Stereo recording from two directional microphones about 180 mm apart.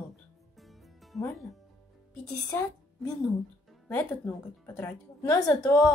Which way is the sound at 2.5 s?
15° left (ahead or behind).